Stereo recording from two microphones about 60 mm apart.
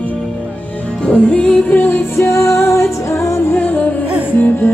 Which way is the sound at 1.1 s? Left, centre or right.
Centre.